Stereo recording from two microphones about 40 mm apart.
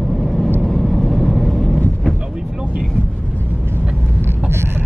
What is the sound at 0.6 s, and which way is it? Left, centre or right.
Vehicle, centre.